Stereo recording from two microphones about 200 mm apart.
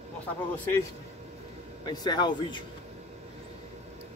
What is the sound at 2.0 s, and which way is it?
Speech, 20° left (ahead or behind).